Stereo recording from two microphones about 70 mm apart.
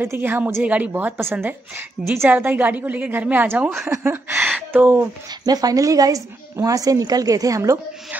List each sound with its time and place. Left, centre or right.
0.0 s a woman's voice: right
2.2 s a woman's voice: right
3.6 s speech: centre
3.9 s a woman's voice: right
5.4 s a woman's voice: right